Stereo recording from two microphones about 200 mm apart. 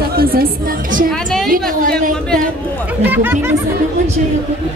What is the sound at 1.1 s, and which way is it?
Speech, 5° left (ahead or behind).